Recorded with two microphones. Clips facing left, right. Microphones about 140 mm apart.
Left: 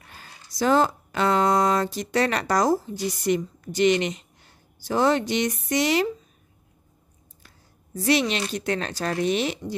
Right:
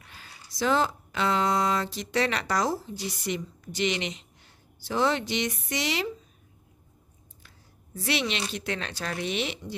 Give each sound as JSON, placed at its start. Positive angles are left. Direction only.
{"t": 0.0, "sound": "speech", "side_deg": 45}
{"t": 7.4, "sound": "speech", "side_deg": 40}